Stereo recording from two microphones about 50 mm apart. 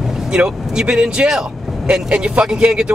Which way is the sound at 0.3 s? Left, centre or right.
Centre.